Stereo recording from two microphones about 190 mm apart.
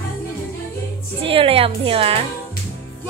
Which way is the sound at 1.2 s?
30° right (ahead or behind).